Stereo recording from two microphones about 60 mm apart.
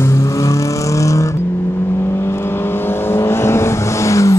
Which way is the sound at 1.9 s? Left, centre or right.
Left.